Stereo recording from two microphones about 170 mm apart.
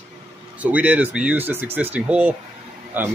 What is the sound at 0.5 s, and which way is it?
Speech, 10° right (ahead or behind).